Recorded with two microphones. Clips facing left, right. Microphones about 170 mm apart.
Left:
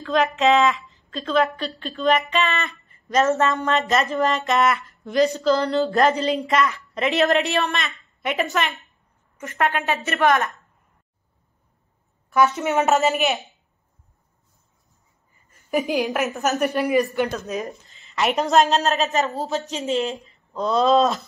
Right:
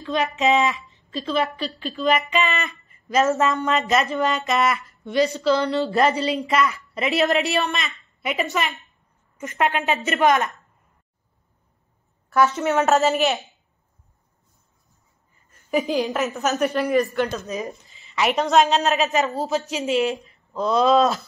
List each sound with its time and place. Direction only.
0.0 s speech: centre (ahead or behind)
9.6 s a woman's voice: 20° right (ahead or behind)
12.3 s speech: centre (ahead or behind)
15.5 s speech: centre (ahead or behind)